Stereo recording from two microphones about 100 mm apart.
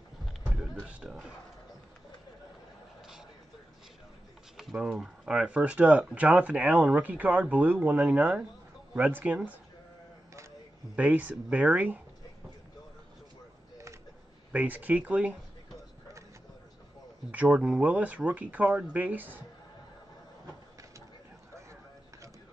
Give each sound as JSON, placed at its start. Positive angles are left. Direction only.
{"t": 0.8, "sound": "speech", "side_deg": -5}
{"t": 4.6, "sound": "speech", "side_deg": -5}
{"t": 11.0, "sound": "speech", "side_deg": -15}
{"t": 14.5, "sound": "speech", "side_deg": -15}
{"t": 17.3, "sound": "speech", "side_deg": -10}